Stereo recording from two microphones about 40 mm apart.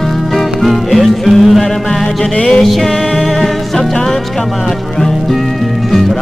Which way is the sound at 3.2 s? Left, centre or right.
Centre.